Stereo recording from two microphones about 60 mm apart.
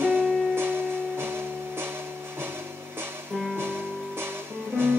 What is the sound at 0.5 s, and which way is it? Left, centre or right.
Music, right.